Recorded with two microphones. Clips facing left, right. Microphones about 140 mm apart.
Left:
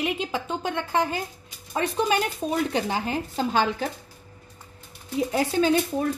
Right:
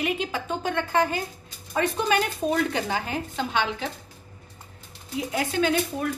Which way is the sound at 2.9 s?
35° left (ahead or behind).